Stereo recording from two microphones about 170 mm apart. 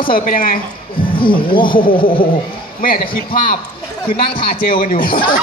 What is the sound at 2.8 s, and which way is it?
Speech, 60° left (ahead or behind).